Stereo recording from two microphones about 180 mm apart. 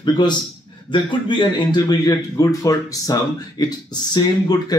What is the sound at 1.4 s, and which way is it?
Speech, 25° left (ahead or behind).